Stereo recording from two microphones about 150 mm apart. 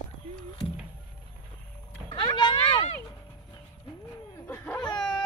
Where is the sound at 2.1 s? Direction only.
35° left (ahead or behind).